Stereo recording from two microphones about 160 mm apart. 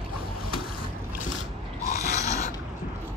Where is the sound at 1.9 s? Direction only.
45° left (ahead or behind).